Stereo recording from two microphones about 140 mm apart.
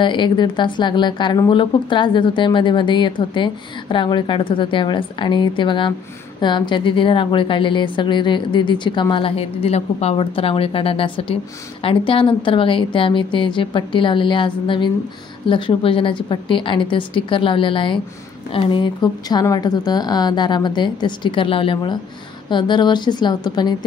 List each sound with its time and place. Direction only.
0.0 s speech: 35° left (ahead or behind)